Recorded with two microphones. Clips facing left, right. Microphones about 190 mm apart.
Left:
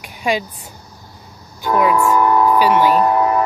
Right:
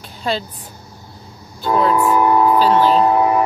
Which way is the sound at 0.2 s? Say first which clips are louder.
Left 2 dB; 10° left (ahead or behind).